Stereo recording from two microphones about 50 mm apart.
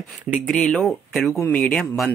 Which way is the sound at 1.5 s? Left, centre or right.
Left.